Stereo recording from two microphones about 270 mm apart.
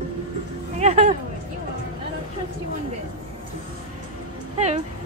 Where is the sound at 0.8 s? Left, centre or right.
Right.